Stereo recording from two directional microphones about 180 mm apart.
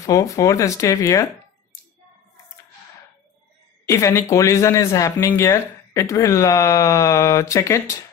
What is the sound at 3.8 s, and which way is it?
Speech, 15° left (ahead or behind).